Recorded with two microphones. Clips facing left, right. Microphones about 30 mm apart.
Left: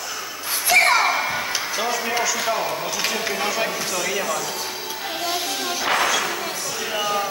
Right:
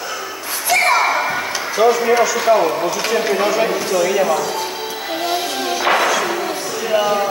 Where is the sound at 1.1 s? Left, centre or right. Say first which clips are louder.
Right 4 dB; right.